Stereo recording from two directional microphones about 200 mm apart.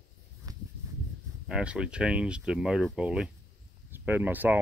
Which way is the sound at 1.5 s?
5° right (ahead or behind).